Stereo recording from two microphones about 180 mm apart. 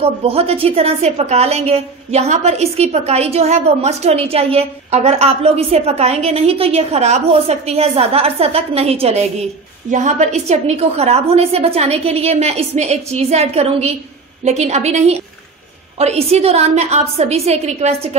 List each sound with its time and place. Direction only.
0.0 s a woman's voice: 35° right (ahead or behind)